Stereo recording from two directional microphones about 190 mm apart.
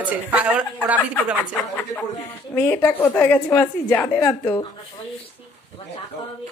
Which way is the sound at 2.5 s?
10° left (ahead or behind).